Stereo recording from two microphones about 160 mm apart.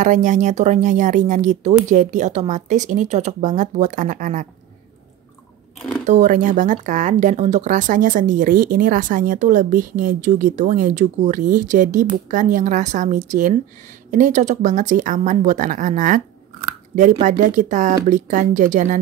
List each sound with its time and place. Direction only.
0.0 s speech: 50° right (ahead or behind)
6.0 s speech: 50° right (ahead or behind)